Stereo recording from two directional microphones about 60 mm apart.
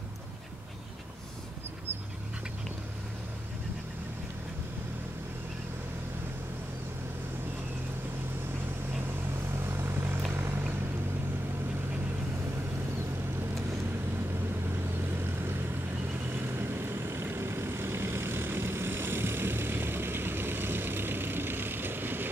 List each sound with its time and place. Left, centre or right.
9.7 s vehicle: right
16.5 s vehicle: right